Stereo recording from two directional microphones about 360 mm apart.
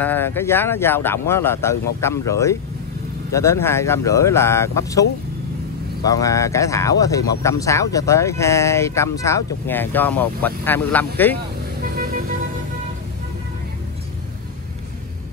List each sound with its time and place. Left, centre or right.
0.0 s speech: centre
6.0 s speech: centre
11.8 s vehicle: right